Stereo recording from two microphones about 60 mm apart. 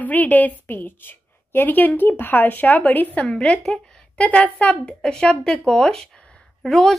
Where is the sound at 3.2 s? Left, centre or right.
Centre.